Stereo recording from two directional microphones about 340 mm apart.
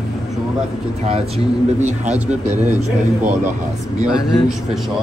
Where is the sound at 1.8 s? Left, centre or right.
Centre.